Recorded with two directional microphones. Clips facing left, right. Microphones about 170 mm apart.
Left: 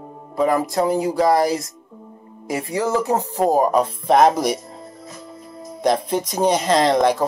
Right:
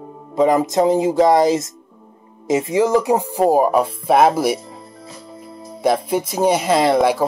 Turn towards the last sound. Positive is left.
turn(degrees=-10)  # may be behind; listen again after turning